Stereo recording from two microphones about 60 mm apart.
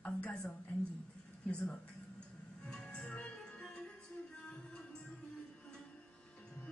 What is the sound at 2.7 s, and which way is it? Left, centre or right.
Music, centre.